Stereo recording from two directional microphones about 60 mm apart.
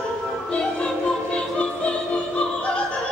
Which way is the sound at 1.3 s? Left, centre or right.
Centre.